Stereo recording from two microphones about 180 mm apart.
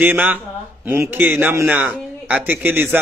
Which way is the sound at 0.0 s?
10° right (ahead or behind).